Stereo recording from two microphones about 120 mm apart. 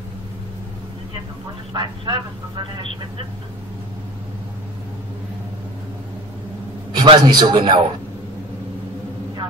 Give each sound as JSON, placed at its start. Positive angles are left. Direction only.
{"t": 1.7, "sound": "a man's voice", "side_deg": -40}
{"t": 7.0, "sound": "a man's voice", "side_deg": -35}